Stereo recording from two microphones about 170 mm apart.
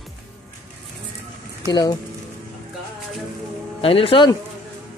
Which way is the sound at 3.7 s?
35° left (ahead or behind).